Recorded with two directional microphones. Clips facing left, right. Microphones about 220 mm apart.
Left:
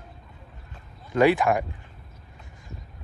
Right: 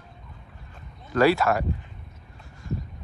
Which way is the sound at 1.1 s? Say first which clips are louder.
Left 1 dB; 15° left (ahead or behind).